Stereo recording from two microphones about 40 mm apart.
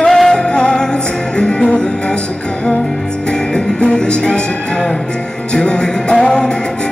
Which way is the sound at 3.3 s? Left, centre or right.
Left.